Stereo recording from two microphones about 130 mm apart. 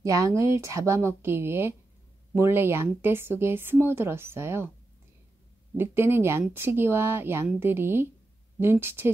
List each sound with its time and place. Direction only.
0.0 s speech: 25° right (ahead or behind)
5.8 s a woman's voice: 20° right (ahead or behind)